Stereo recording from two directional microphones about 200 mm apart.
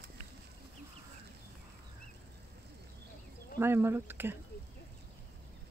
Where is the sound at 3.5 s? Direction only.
10° right (ahead or behind).